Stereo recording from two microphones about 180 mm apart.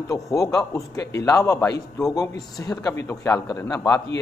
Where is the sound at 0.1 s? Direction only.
20° left (ahead or behind).